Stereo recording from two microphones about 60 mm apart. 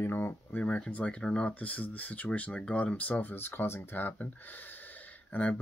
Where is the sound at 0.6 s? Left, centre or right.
Left.